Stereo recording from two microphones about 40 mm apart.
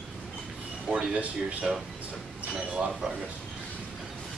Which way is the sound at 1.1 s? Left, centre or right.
Right.